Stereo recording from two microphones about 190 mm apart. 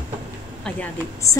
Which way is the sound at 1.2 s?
15° left (ahead or behind).